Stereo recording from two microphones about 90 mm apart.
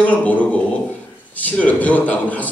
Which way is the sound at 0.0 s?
15° left (ahead or behind).